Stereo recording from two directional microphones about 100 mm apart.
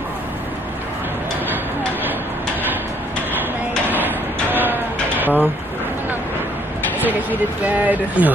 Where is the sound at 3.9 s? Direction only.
20° right (ahead or behind).